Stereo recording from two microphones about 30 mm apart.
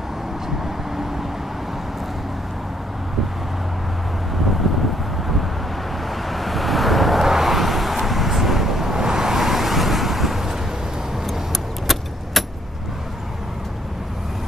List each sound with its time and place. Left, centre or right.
6.0 s vehicle: centre; by 9.4 s right
9.4 s vehicle: centre
11.5 s vehicle: centre